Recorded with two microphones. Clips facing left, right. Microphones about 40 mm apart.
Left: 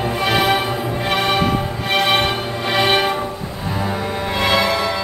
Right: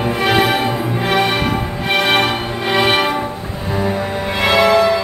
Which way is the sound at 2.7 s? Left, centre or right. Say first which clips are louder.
Right 2 dB; centre.